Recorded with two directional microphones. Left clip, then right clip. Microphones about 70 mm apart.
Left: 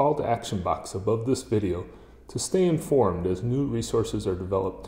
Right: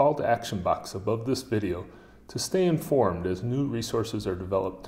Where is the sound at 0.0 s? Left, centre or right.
Left.